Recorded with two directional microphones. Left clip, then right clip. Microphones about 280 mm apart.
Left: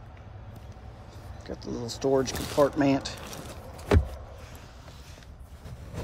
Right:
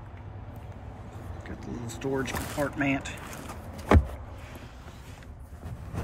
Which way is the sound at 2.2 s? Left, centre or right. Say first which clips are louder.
Left 7 dB; centre.